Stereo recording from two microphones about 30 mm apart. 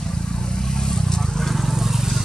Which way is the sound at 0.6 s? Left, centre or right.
Centre.